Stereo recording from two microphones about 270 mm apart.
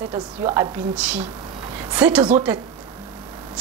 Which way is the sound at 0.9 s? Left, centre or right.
Centre.